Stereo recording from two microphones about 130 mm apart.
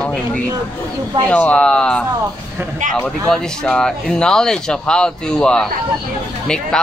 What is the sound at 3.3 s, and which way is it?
Speech, 5° left (ahead or behind).